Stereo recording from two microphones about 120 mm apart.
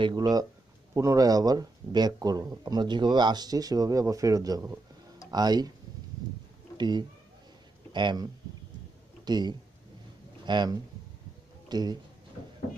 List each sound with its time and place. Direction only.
0.0 s speech: 35° right (ahead or behind)
6.8 s speech: 40° right (ahead or behind)